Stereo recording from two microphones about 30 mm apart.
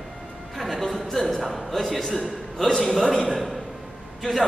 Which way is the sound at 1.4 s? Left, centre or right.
Centre.